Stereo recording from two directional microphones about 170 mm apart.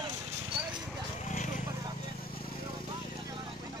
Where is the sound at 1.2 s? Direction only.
45° left (ahead or behind).